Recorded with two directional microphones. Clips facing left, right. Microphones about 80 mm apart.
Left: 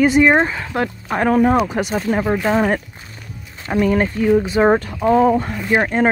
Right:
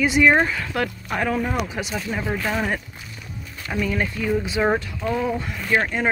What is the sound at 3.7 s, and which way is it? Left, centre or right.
Speech, left.